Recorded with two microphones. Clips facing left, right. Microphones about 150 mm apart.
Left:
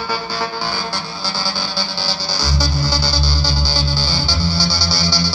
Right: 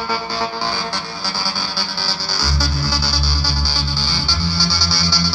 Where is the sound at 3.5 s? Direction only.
20° left (ahead or behind).